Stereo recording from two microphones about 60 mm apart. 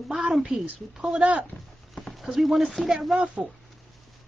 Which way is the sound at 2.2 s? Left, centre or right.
Centre.